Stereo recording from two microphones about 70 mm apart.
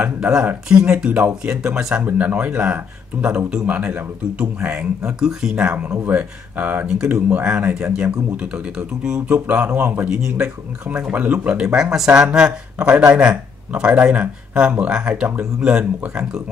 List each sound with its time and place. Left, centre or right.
0.0 s speech: centre
7.0 s speech: centre
10.0 s speech: centre
10.9 s speech: right
11.6 s speech: centre